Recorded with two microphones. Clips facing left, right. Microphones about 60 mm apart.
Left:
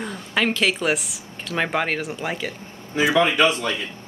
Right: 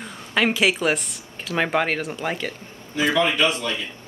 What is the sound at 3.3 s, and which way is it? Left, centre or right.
Speech, left.